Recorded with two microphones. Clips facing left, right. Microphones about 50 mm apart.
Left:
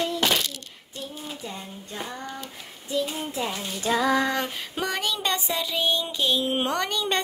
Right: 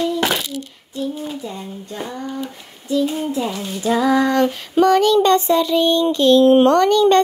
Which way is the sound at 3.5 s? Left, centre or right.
Right.